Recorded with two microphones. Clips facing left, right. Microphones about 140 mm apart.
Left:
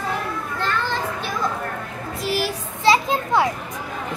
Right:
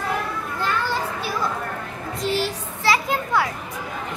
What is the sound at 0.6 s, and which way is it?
Children playing, 10° right (ahead or behind).